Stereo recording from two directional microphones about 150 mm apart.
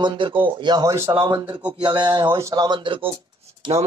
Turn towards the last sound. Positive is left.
turn(degrees=-30)  # may be behind; listen again after turning